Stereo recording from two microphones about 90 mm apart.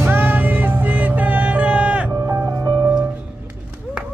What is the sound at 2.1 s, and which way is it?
Music, 25° right (ahead or behind).